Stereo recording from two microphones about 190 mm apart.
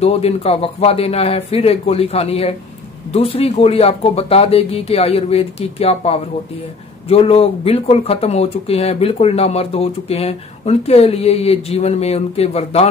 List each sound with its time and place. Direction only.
0.0 s speech: 30° left (ahead or behind)